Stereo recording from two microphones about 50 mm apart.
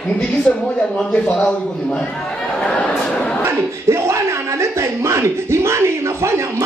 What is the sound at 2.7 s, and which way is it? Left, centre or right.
Speech, left.